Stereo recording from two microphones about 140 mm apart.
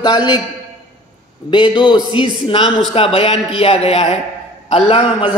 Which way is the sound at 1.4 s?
35° left (ahead or behind).